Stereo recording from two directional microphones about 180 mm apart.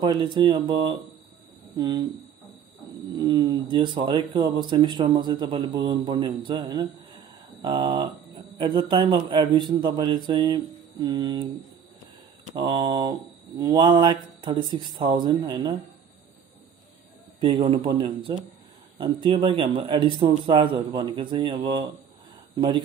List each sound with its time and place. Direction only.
0.0 s speech: 25° right (ahead or behind)
3.2 s speech: 20° right (ahead or behind)
12.5 s speech: 25° right (ahead or behind)
17.4 s a man's voice: 30° right (ahead or behind)